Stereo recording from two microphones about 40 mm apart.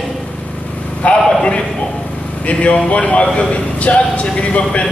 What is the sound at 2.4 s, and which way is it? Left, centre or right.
A man's voice, left.